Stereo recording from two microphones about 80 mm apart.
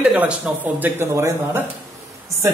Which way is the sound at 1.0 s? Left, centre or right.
Right.